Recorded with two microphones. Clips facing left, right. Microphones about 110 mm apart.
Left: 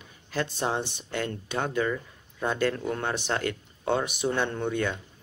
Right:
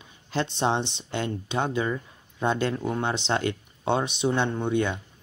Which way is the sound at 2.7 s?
10° right (ahead or behind).